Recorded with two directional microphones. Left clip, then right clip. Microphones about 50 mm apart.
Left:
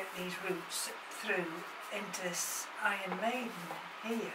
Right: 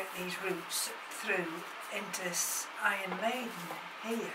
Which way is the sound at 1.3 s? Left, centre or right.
Right.